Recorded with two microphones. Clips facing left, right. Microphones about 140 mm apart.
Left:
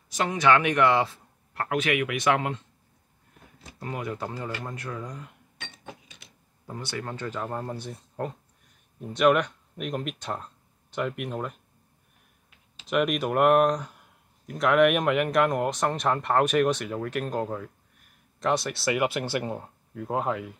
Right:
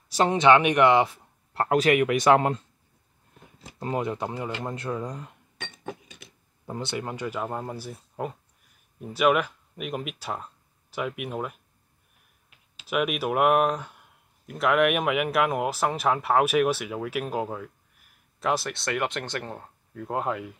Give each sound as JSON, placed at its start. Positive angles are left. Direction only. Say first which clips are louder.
{"t": 0.1, "sound": "speech", "louder": "right 4 dB", "side_deg": -30}
{"t": 1.5, "sound": "speech", "louder": "right 5 dB", "side_deg": -35}
{"t": 3.8, "sound": "speech", "louder": "right 4 dB", "side_deg": -25}
{"t": 6.7, "sound": "speech", "louder": "right 3 dB", "side_deg": -25}
{"t": 12.7, "sound": "speech", "louder": "left 2 dB", "side_deg": -5}